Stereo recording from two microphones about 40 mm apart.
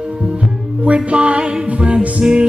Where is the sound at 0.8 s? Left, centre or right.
Right.